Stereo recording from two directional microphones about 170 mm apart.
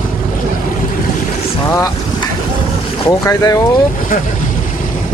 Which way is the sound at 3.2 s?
20° left (ahead or behind).